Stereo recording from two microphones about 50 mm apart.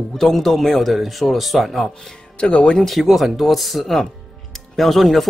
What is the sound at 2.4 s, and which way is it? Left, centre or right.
Speech, centre.